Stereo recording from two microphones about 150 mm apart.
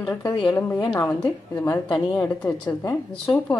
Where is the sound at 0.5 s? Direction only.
15° left (ahead or behind).